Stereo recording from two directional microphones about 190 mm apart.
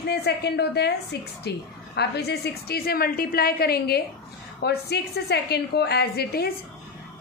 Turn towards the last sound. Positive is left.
turn(degrees=55)  # may be behind; listen again after turning